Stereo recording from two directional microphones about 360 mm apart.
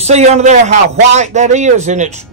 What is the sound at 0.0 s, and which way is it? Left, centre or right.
A man's voice, centre.